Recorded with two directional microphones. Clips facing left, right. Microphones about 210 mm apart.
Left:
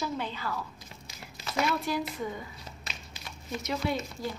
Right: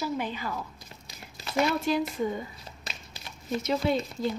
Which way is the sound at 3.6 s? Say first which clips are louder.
Right 4 dB; 25° right (ahead or behind).